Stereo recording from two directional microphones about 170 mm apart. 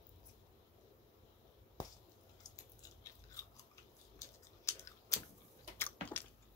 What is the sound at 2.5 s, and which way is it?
Chewing, 20° left (ahead or behind).